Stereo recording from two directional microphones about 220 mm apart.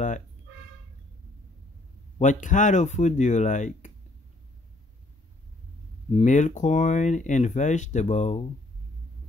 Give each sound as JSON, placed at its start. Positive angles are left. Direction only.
{"t": 2.1, "sound": "speech", "side_deg": 35}
{"t": 6.1, "sound": "speech", "side_deg": 35}